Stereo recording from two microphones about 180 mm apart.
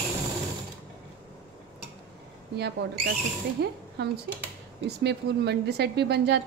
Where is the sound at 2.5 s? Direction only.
65° right (ahead or behind).